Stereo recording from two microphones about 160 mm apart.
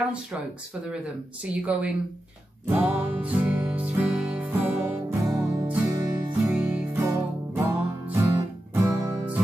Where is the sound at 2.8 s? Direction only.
10° right (ahead or behind).